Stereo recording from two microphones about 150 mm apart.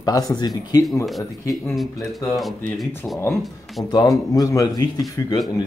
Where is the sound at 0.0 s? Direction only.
25° left (ahead or behind).